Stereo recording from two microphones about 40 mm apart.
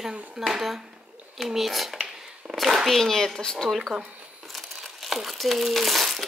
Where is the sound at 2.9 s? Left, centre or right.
Centre.